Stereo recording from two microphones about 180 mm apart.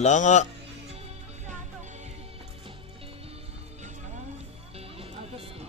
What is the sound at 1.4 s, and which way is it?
Music, 40° right (ahead or behind).